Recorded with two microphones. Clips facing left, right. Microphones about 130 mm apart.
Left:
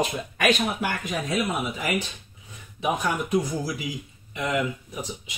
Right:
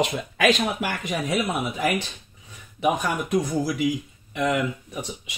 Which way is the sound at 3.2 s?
90° right.